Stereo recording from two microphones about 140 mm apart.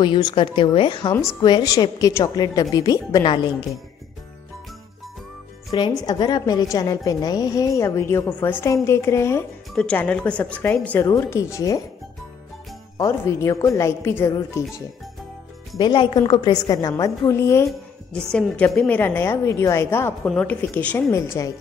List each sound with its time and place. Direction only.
0.0 s a woman's voice: 35° left (ahead or behind)
5.7 s a woman's voice: 30° left (ahead or behind)
9.8 s a woman's voice: 10° left (ahead or behind)
12.9 s a woman's voice: 20° left (ahead or behind)
15.8 s a woman's voice: 35° left (ahead or behind); by 17.6 s 20° left (ahead or behind)
18.3 s a woman's voice: 5° left (ahead or behind)